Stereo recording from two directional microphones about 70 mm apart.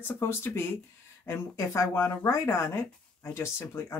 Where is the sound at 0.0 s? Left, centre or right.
Left.